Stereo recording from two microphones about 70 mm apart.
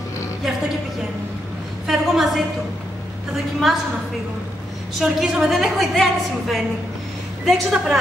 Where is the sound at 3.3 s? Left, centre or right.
Centre.